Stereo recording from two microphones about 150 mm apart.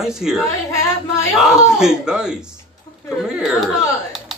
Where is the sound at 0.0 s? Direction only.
5° right (ahead or behind).